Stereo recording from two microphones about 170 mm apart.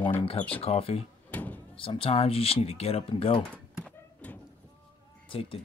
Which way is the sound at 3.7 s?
5° left (ahead or behind).